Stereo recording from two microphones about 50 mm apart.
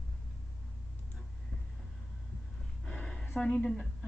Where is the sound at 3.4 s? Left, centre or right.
Left.